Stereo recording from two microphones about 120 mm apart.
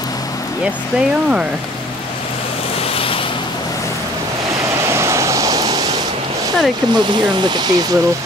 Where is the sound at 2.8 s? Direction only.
50° left (ahead or behind).